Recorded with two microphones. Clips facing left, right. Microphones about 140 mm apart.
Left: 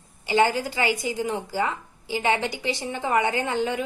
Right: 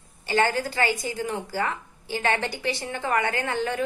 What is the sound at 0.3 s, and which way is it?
A woman's voice, 15° left (ahead or behind).